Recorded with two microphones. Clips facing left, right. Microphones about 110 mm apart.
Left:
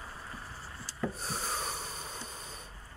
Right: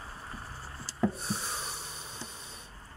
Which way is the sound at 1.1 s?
40° left (ahead or behind).